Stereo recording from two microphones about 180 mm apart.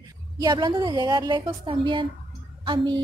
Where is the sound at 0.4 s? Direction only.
25° right (ahead or behind).